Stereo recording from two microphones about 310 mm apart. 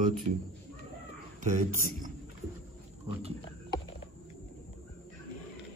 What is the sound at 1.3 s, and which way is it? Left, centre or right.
Speech, right.